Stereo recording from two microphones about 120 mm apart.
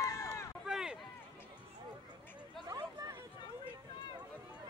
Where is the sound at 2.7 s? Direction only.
25° right (ahead or behind).